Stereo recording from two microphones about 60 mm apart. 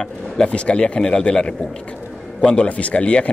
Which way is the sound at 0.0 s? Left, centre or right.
Centre.